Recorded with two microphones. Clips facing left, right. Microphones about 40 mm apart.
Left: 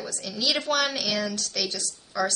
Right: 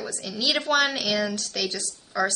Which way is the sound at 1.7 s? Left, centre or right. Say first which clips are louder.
Right 2 dB; right.